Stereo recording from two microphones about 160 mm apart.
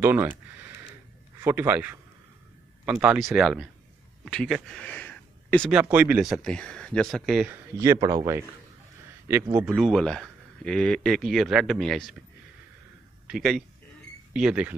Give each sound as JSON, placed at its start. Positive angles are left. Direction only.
{"t": 0.0, "sound": "speech", "side_deg": -15}
{"t": 5.7, "sound": "speech", "side_deg": -10}
{"t": 7.8, "sound": "speech", "side_deg": -20}
{"t": 13.3, "sound": "speech", "side_deg": 0}